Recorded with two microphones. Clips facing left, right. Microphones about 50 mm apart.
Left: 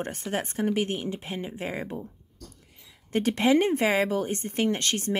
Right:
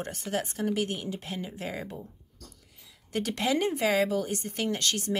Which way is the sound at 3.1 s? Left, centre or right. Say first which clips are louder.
Left 6 dB; left.